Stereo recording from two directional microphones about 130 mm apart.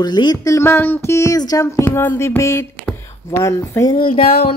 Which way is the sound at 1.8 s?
15° left (ahead or behind).